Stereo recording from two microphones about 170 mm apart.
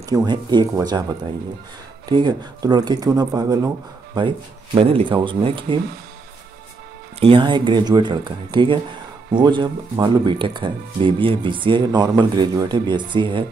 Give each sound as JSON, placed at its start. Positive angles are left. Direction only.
{"t": 0.1, "sound": "speech", "side_deg": -25}
{"t": 2.0, "sound": "speech", "side_deg": -25}
{"t": 7.2, "sound": "speech", "side_deg": -30}